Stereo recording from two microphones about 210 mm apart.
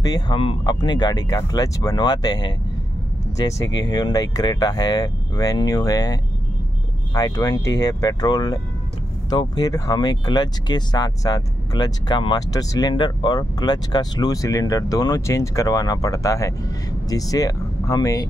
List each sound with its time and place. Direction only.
0.0 s speech: 20° left (ahead or behind)
7.2 s speech: 20° left (ahead or behind)